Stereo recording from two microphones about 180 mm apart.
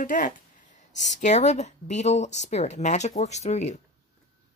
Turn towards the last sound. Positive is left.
turn(degrees=40)  # may be behind; listen again after turning